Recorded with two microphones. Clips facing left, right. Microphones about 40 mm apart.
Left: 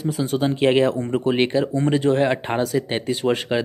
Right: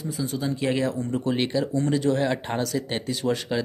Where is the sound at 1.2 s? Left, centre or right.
Left.